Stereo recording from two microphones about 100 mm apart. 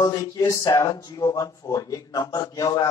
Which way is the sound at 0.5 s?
40° left (ahead or behind).